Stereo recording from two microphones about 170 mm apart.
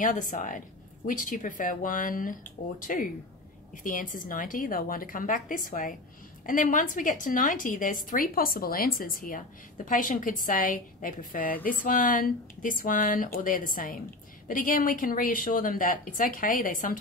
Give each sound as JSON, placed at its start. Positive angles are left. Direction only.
{"t": 0.0, "sound": "a woman's voice", "side_deg": 50}